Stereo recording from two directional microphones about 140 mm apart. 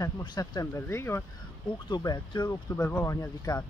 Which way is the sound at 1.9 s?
35° left (ahead or behind).